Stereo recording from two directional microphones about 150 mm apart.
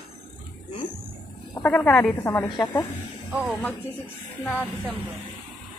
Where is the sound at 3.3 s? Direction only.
5° right (ahead or behind).